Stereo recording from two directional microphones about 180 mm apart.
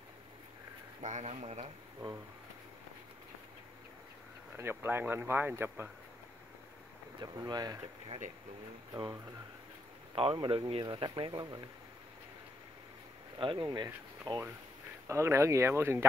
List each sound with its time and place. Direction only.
1.0 s speech: 40° right (ahead or behind)
4.6 s speech: 10° right (ahead or behind)
7.2 s speech: 25° right (ahead or behind)
13.4 s speech: 25° right (ahead or behind)